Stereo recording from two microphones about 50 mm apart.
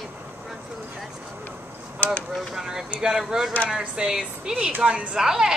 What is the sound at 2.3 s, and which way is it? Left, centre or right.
A woman's voice, centre.